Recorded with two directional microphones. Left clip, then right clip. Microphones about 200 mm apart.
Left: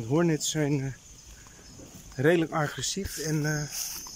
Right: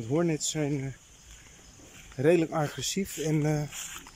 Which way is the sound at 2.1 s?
5° right (ahead or behind).